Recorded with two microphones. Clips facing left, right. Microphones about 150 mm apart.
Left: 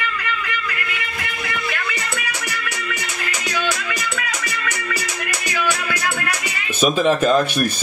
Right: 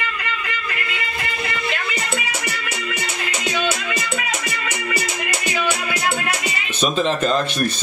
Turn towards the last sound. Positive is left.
turn(degrees=10)  # may be behind; listen again after turning